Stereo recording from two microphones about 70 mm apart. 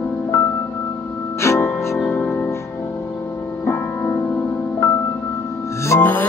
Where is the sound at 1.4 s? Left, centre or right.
Left.